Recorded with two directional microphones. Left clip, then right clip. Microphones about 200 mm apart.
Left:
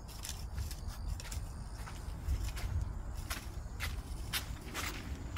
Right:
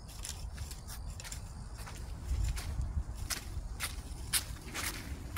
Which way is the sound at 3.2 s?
35° right (ahead or behind).